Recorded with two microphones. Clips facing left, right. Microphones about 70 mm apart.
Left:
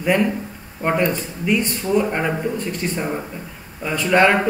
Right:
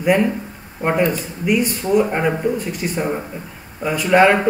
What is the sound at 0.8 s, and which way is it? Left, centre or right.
Speech, centre.